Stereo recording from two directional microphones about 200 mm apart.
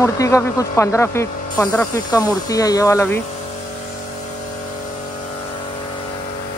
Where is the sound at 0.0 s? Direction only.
15° left (ahead or behind).